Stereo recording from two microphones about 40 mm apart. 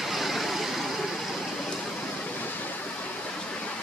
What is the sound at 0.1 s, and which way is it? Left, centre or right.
Vehicle, centre.